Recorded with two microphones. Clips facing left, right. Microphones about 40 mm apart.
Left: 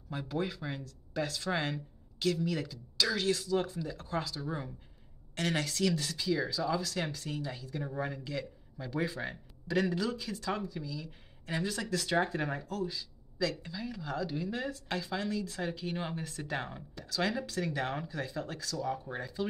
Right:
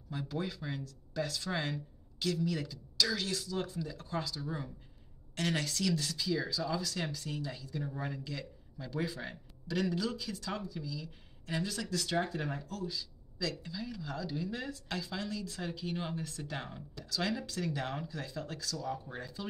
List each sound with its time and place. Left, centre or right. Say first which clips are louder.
0.2 s speech: left 3 dB; left
16.6 s speech: left 2 dB; centre